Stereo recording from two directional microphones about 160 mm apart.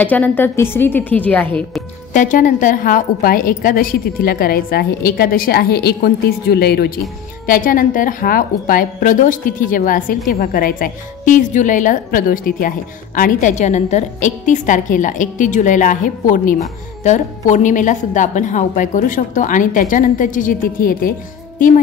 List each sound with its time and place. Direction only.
0.0 s a woman's voice: 10° left (ahead or behind)
2.1 s a woman's voice: 55° left (ahead or behind); by 6.9 s 85° left
7.4 s a woman's voice: 60° left (ahead or behind)